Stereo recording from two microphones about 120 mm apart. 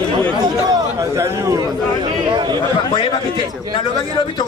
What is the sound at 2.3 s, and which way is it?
Speech, 40° right (ahead or behind).